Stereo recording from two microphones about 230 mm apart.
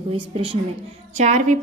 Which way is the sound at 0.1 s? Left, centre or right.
Right.